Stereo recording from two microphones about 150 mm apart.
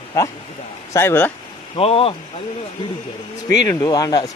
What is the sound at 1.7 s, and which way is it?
Speech, 40° left (ahead or behind).